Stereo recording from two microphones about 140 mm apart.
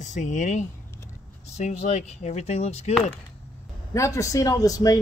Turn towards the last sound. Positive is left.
turn(degrees=25)  # may be behind; listen again after turning